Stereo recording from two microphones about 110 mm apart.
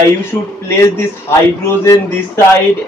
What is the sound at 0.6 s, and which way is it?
Speech, 25° left (ahead or behind).